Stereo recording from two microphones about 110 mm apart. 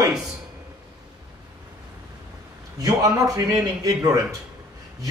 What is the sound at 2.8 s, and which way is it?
A man's voice, 35° right (ahead or behind).